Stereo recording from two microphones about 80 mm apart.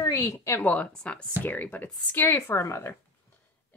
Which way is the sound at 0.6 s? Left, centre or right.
Centre.